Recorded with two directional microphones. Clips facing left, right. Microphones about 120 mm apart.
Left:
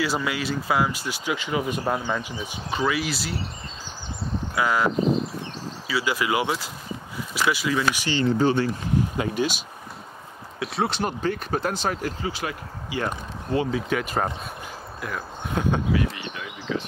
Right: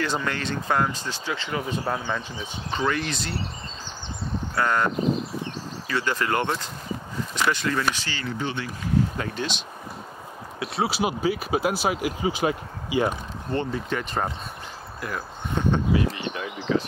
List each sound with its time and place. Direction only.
0.0 s speech: 5° left (ahead or behind)
4.6 s speech: 5° left (ahead or behind)
8.2 s speech: 35° left (ahead or behind)
9.1 s speech: 10° left (ahead or behind); by 13.1 s 15° right (ahead or behind)
13.8 s speech: 5° left (ahead or behind)
15.9 s a sound: 35° right (ahead or behind)